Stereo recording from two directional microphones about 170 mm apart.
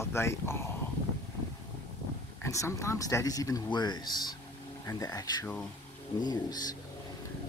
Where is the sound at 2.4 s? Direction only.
20° left (ahead or behind).